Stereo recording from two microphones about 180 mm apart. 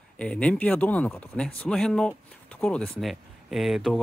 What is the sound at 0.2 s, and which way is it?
Speech, 5° left (ahead or behind).